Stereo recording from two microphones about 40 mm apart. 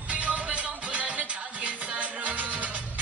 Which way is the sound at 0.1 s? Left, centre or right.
Right.